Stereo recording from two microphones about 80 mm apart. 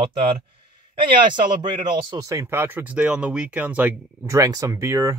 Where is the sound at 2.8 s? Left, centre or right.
Centre.